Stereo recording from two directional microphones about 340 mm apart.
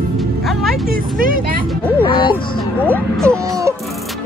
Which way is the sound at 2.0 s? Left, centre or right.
Centre.